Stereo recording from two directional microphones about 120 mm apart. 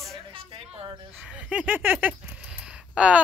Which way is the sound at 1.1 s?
Centre (ahead or behind).